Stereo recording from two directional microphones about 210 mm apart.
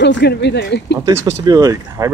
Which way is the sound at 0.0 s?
55° left (ahead or behind).